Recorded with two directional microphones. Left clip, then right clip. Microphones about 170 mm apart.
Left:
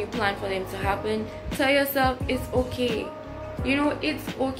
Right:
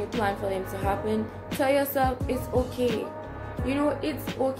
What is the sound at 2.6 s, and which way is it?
Speech, centre (ahead or behind).